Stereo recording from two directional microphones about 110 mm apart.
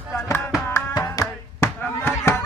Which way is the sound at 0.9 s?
30° left (ahead or behind).